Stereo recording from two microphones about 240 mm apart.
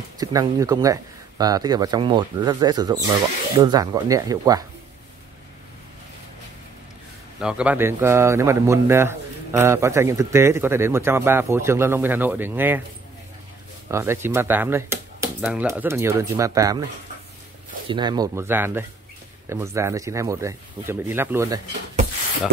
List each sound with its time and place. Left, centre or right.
0.2 s a man's voice: centre
7.3 s a man's voice: centre
13.8 s a man's voice: centre
17.8 s a man's voice: centre